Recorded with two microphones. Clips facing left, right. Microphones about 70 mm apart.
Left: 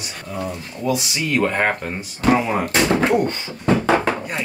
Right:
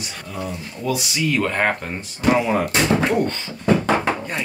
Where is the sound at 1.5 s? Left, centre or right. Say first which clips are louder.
Left 1 dB; centre.